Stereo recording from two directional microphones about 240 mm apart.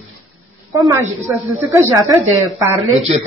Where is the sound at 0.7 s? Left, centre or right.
Centre.